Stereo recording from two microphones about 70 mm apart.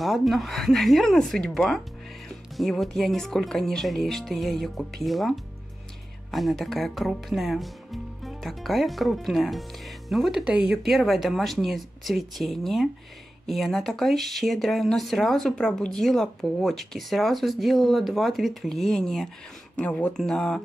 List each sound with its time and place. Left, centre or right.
0.0 s speech: centre
10.4 s speech: centre
10.8 s speech: centre
19.8 s speech: centre
20.2 s speech: centre